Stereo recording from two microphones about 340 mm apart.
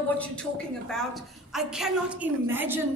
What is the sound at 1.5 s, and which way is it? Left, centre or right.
A man's voice, centre.